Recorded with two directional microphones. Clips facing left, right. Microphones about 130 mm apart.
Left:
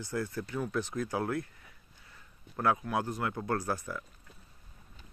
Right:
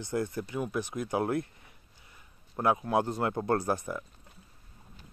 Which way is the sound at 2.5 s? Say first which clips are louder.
Right 3 dB; 20° right (ahead or behind).